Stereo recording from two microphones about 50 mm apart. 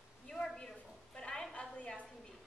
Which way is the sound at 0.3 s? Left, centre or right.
Centre.